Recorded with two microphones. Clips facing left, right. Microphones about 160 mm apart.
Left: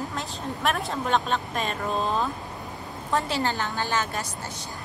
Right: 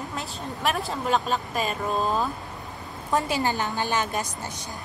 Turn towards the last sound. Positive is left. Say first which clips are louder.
# right 2 dB
turn(degrees=-15)  # may be behind; listen again after turning